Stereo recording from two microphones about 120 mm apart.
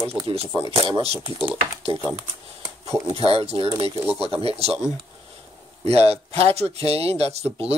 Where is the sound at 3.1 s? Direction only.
50° right (ahead or behind).